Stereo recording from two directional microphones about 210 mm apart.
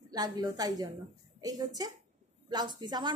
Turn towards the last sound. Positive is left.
turn(degrees=-20)  # may be behind; listen again after turning